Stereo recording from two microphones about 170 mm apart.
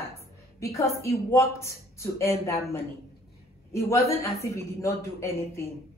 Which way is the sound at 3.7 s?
15° left (ahead or behind).